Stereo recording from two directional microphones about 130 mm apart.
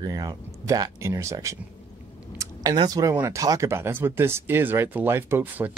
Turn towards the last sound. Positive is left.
turn(degrees=-15)  # may be behind; listen again after turning